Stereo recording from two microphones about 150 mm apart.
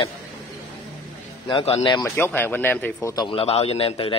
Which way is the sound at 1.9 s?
20° left (ahead or behind).